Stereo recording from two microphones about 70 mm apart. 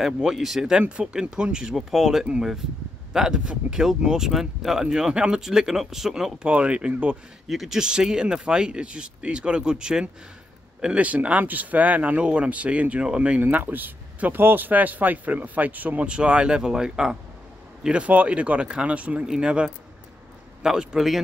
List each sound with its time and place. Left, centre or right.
0.0 s speech: centre
7.4 s speech: centre
13.4 s speech: right; by 21.2 s centre